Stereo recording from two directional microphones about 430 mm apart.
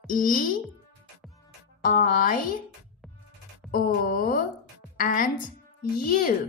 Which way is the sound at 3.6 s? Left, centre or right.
Centre.